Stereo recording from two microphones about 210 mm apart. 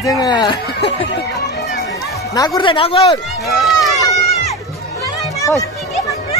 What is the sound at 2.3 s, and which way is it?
Speech, 20° left (ahead or behind).